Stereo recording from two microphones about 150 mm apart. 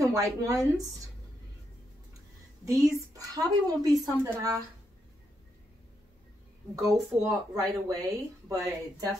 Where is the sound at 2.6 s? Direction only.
20° right (ahead or behind).